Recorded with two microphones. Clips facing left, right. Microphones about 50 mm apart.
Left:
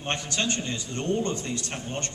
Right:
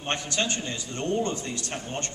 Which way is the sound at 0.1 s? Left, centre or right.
Centre.